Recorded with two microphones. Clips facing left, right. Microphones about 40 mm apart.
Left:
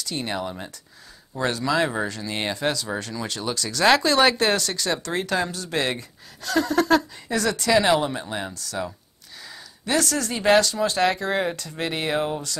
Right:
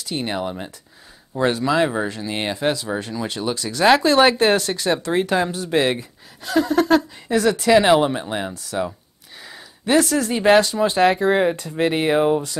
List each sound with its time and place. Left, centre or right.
0.0 s speech: centre